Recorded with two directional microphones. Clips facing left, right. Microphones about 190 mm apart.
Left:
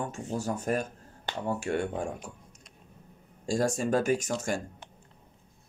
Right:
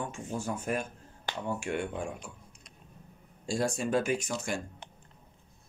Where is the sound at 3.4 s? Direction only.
45° left (ahead or behind).